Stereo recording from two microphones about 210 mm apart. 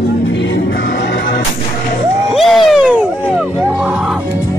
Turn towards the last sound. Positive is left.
turn(degrees=-5)  # may be behind; listen again after turning